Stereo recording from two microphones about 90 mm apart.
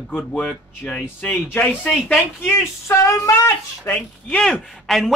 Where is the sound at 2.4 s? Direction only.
25° left (ahead or behind).